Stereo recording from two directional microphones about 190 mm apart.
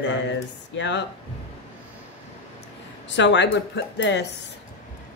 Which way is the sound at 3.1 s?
70° left (ahead or behind).